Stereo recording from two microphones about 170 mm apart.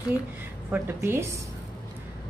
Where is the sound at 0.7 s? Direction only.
15° right (ahead or behind).